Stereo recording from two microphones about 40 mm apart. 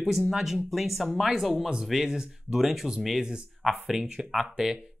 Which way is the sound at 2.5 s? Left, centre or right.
Centre.